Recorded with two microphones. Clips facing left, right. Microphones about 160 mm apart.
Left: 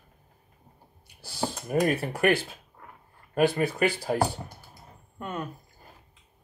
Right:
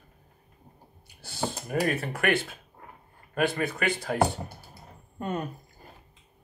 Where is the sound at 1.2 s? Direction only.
30° left (ahead or behind).